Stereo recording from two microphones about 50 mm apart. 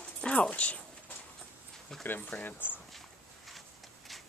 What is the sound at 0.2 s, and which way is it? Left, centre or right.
Speech, left.